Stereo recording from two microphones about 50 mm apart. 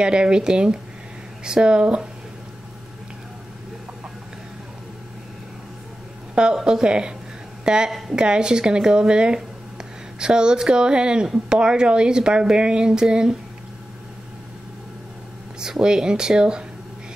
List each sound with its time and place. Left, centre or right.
0.0 s speech: centre
6.3 s a woman's voice: centre
15.6 s speech: centre